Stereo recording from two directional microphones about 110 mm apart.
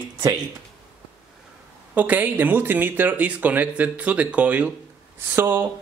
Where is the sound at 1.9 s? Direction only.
15° right (ahead or behind).